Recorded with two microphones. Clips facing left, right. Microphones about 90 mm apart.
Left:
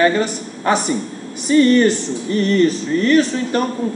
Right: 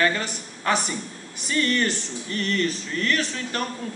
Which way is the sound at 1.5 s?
20° left (ahead or behind).